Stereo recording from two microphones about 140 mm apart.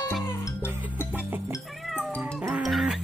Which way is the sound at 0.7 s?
15° right (ahead or behind).